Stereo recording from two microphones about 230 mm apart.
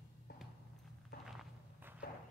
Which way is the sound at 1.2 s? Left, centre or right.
Centre.